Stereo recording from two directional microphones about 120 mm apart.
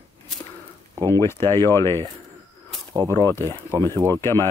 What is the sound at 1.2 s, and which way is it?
Speech, 20° left (ahead or behind).